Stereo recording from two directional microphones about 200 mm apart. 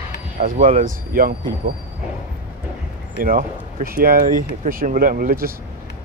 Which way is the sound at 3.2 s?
45° right (ahead or behind).